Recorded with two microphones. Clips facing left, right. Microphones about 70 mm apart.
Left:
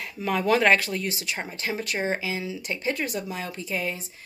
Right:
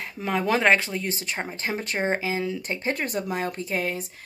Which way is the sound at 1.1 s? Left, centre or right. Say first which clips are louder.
Right 1 dB; right.